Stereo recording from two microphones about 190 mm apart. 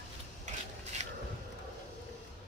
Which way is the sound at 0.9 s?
35° right (ahead or behind).